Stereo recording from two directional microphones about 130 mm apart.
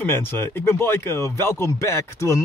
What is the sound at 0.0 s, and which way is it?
A man's voice, 15° left (ahead or behind).